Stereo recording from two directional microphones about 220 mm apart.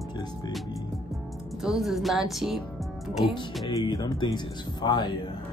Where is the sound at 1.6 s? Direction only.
Centre (ahead or behind).